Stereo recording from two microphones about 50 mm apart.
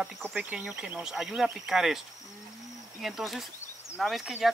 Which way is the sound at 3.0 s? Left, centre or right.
Centre.